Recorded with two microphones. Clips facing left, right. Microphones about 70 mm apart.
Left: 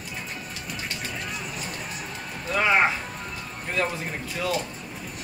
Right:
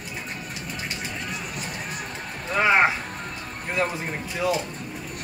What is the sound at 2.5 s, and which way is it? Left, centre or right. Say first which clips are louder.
Speech: right 2 dB; centre.